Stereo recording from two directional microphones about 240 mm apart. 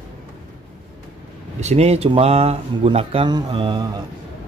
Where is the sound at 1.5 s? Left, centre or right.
Right.